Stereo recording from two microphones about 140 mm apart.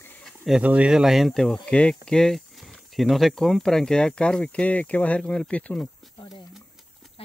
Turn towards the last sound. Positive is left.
turn(degrees=10)  # may be behind; listen again after turning